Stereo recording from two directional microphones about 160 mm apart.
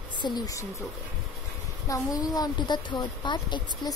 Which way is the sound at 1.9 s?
25° left (ahead or behind).